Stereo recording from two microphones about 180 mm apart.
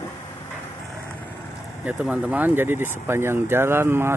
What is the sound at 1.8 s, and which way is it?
Speech, 10° right (ahead or behind).